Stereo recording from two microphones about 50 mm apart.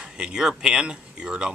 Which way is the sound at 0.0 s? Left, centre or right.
Centre.